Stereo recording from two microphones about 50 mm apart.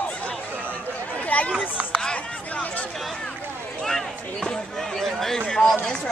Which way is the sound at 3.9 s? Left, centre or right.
Centre.